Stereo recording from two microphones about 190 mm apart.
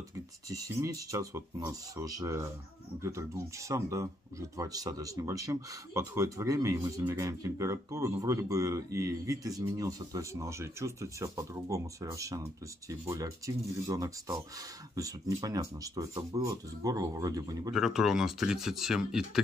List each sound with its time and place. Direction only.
0.5 s speech: 15° right (ahead or behind)
17.7 s speech: centre (ahead or behind)